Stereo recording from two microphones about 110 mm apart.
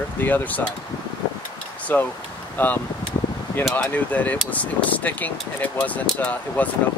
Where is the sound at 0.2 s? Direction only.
15° left (ahead or behind).